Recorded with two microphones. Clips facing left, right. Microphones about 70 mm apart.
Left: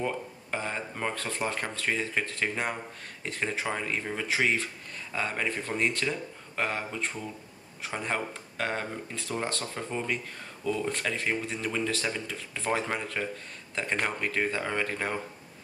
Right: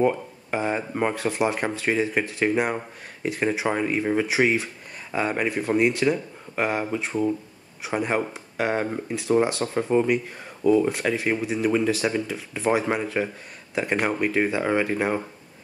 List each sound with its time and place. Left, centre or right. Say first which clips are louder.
0.0 s speech: right 10 dB; centre
9.8 s speech: right 14 dB; right
10.9 s speech: right 6 dB; centre